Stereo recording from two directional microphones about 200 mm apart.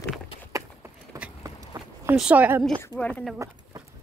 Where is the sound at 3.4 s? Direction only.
15° right (ahead or behind).